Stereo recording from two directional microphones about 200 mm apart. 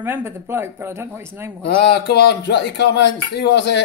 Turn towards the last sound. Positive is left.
turn(degrees=60)  # may be behind; listen again after turning